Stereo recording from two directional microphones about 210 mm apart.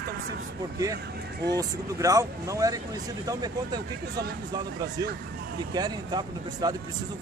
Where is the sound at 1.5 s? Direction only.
15° right (ahead or behind).